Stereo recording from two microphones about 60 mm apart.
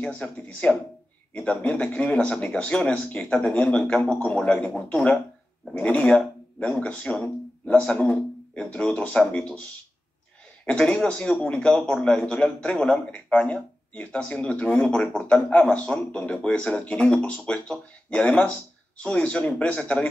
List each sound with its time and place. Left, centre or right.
0.0 s a man's voice: left
5.7 s a man's voice: left
10.6 s a man's voice: centre